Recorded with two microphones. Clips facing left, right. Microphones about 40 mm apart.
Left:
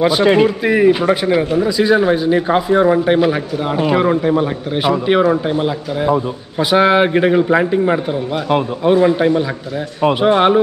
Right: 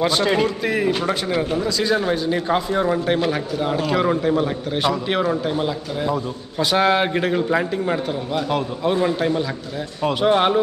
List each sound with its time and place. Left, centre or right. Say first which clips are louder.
0.0 s a man's voice: left 7 dB; centre